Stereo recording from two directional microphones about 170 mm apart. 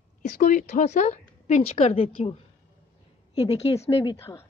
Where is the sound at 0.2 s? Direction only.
55° left (ahead or behind); by 2.3 s 35° left (ahead or behind).